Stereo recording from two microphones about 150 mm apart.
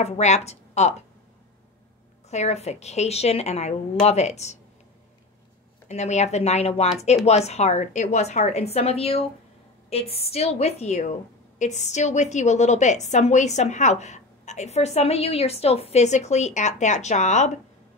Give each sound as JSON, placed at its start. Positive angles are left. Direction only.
{"t": 0.0, "sound": "a woman's voice", "side_deg": 45}
{"t": 2.2, "sound": "a woman's voice", "side_deg": 45}
{"t": 5.9, "sound": "a woman's voice", "side_deg": 50}